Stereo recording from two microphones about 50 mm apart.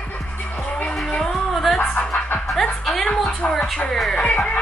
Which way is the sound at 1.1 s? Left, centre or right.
Centre.